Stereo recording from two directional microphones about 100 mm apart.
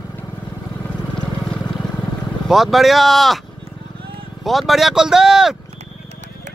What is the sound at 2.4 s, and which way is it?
Speech, centre (ahead or behind).